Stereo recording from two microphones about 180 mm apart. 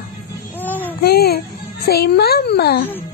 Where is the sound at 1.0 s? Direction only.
60° left (ahead or behind).